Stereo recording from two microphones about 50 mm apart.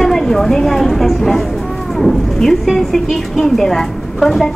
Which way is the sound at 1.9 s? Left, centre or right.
Centre.